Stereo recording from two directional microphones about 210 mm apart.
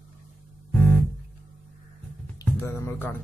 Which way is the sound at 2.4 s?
10° left (ahead or behind).